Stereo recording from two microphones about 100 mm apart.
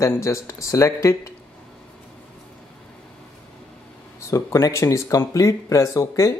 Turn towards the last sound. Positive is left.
turn(degrees=30)  # may be behind; listen again after turning